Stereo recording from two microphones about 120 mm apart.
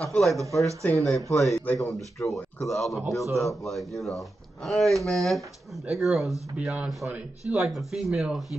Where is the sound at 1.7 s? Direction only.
Centre (ahead or behind).